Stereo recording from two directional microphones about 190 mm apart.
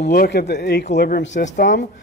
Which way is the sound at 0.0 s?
55° left (ahead or behind).